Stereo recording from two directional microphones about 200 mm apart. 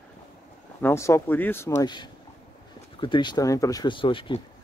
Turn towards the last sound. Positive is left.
turn(degrees=25)  # may be behind; listen again after turning